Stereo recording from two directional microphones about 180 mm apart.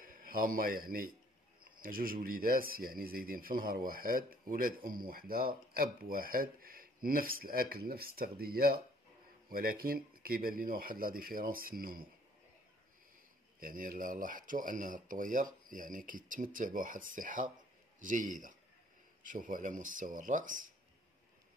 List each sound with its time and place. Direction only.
0.0 s speech: 50° right (ahead or behind)
13.6 s speech: 50° right (ahead or behind)